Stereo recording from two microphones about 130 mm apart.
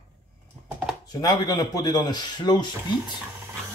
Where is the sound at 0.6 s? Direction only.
10° right (ahead or behind).